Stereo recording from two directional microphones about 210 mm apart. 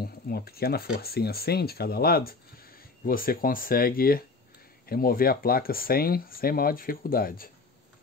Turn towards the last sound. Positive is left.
turn(degrees=45)  # may be behind; listen again after turning